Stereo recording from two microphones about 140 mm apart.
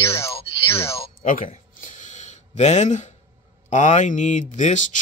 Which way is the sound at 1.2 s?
75° left (ahead or behind).